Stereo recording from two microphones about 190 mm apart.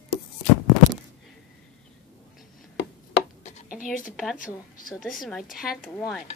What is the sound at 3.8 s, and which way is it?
Speech, 45° left (ahead or behind).